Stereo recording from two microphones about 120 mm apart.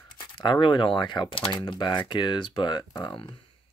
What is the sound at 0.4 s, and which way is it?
Speech, 40° left (ahead or behind).